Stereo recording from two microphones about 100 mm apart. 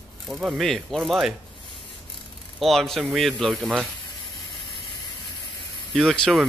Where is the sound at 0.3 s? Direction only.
10° right (ahead or behind).